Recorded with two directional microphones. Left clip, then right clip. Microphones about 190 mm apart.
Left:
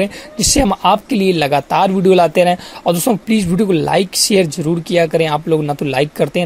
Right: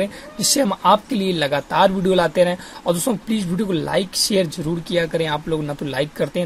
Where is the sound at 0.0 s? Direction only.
35° left (ahead or behind).